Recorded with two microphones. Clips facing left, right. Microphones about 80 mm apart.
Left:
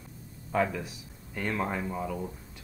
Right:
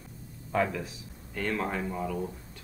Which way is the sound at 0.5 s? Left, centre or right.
Centre.